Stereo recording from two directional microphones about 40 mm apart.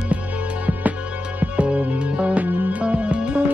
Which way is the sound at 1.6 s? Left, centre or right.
Right.